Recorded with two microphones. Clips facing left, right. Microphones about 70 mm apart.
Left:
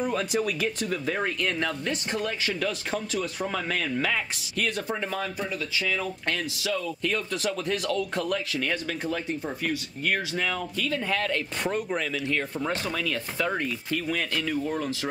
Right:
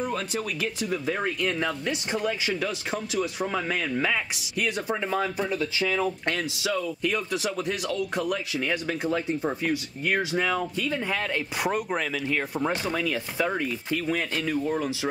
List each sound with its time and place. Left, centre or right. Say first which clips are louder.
0.0 s speech: left 3 dB; centre
9.4 s speech: right 3 dB; right